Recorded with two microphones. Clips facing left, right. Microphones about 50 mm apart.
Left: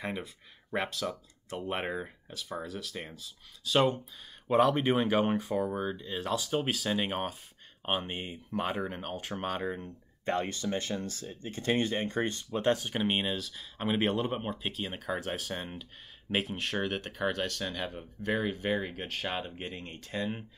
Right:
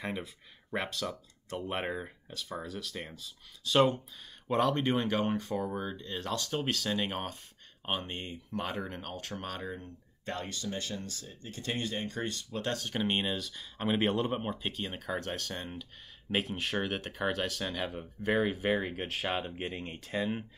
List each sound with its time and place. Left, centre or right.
0.0 s speech: centre; by 12.4 s left
12.5 s speech: centre